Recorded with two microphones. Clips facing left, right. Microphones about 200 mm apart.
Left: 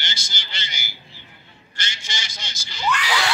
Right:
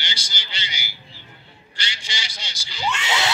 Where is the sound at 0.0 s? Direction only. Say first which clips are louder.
Even; 45° left (ahead or behind).